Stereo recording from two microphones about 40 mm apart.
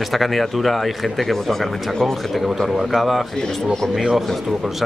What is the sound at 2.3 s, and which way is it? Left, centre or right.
Speech, centre.